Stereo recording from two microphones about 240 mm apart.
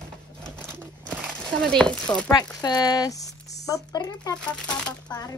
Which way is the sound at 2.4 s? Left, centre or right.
Centre.